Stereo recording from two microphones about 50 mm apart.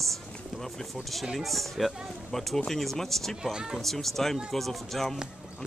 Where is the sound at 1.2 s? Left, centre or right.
Centre.